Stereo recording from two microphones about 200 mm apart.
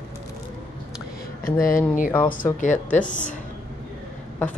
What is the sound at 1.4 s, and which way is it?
Speech, 45° left (ahead or behind).